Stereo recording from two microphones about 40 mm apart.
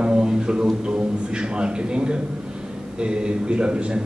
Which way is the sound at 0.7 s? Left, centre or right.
Right.